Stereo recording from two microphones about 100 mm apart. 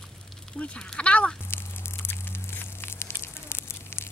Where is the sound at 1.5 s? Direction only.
25° left (ahead or behind).